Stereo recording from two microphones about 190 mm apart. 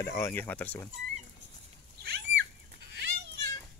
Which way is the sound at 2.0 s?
60° right (ahead or behind).